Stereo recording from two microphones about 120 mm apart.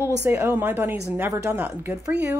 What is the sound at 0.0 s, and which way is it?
Speech, 20° right (ahead or behind).